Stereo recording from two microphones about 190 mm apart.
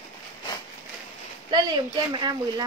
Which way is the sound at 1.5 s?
20° right (ahead or behind).